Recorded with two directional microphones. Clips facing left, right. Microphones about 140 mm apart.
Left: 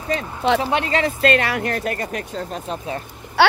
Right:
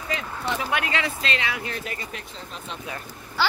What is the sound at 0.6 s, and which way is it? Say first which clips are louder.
Speech: left 6 dB; 35° left (ahead or behind).